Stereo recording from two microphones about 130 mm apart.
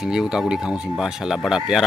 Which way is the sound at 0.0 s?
5° right (ahead or behind).